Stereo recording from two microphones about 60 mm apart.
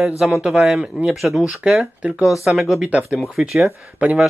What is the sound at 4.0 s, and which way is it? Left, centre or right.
Speech, right.